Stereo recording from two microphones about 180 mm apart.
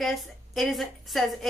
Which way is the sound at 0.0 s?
Centre (ahead or behind).